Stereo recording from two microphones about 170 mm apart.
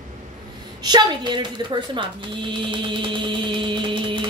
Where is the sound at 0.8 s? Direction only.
25° right (ahead or behind).